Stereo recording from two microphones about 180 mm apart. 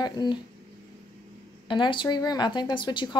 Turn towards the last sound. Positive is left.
turn(degrees=25)  # may be behind; listen again after turning